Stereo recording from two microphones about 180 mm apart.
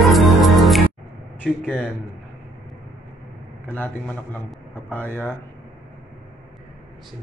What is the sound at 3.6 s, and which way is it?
Speech, 10° left (ahead or behind).